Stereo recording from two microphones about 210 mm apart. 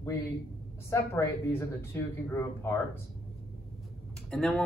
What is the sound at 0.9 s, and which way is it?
A man's voice, 10° left (ahead or behind).